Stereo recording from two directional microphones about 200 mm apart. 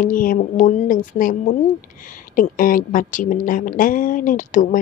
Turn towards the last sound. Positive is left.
turn(degrees=40)  # may be behind; listen again after turning